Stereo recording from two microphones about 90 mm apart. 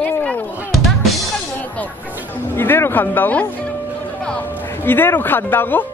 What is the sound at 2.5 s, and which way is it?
Speech, 25° left (ahead or behind).